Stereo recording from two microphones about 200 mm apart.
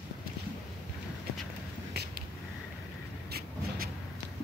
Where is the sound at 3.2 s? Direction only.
50° right (ahead or behind).